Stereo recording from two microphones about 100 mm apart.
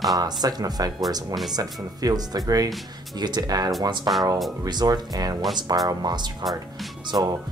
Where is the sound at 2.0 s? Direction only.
40° right (ahead or behind).